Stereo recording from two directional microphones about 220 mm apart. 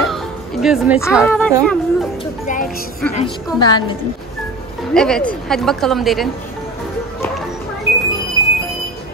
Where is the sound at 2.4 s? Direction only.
40° left (ahead or behind).